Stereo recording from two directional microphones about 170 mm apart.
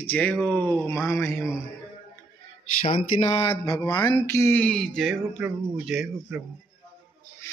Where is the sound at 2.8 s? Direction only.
35° left (ahead or behind).